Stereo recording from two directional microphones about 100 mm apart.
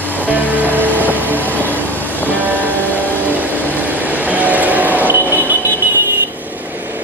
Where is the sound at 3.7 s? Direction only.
15° right (ahead or behind).